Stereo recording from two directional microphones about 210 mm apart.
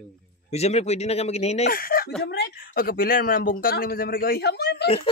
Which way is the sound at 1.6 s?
45° left (ahead or behind).